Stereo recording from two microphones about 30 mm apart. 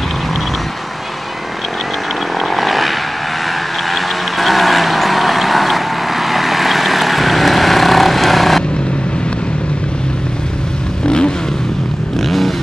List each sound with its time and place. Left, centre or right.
2.3 s vehicle: centre
11.1 s vehicle: left
12.2 s vehicle: centre